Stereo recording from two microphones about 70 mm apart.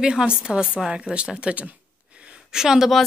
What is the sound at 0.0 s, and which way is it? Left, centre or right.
A woman's voice, centre.